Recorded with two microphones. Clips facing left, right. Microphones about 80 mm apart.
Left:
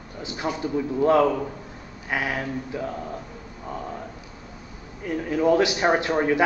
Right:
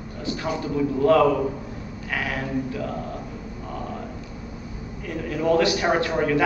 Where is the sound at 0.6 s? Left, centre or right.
Left.